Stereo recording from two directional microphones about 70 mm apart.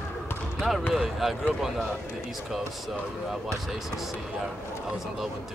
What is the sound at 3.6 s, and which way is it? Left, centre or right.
Speech, centre.